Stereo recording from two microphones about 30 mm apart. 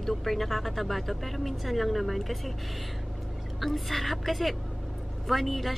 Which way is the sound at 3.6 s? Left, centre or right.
Centre.